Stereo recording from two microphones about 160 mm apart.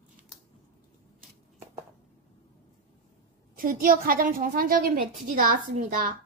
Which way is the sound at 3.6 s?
60° right (ahead or behind).